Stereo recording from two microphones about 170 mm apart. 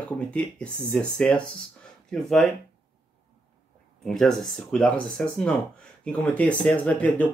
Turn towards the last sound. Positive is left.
turn(degrees=10)  # may be behind; listen again after turning